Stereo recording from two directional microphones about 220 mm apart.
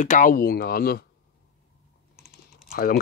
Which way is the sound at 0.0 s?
35° left (ahead or behind).